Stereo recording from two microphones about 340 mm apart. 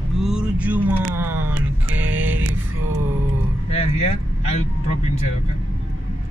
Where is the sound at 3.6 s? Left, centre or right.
Centre.